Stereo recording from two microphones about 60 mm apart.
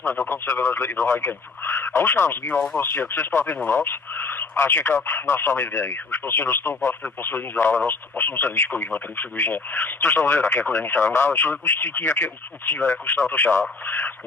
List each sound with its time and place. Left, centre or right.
0.5 s speech: left
12.7 s speech: left